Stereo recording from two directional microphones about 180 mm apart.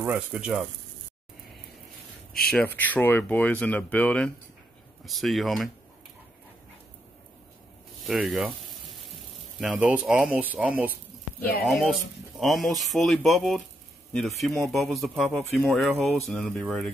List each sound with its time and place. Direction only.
0.0 s speech: 5° right (ahead or behind)
2.4 s speech: 10° left (ahead or behind)
8.0 s speech: centre (ahead or behind)